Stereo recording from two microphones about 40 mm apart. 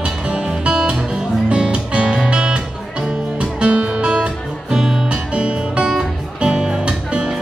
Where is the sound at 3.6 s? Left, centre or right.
Right.